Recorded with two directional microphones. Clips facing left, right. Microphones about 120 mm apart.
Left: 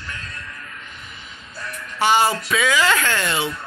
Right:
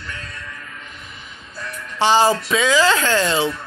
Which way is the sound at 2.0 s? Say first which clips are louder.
Right 3 dB; 30° right (ahead or behind).